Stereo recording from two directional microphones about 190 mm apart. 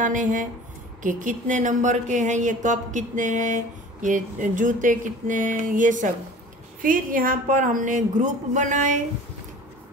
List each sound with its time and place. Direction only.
0.0 s a woman's voice: 40° right (ahead or behind)